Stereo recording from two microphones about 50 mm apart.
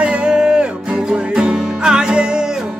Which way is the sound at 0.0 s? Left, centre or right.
Right.